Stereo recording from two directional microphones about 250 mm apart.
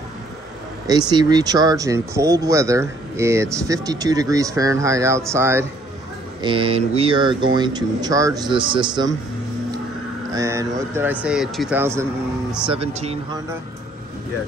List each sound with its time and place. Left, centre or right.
0.8 s speech: centre
6.4 s mantra: right
7.5 s speech: centre
10.3 s speech: centre
12.7 s mantra: right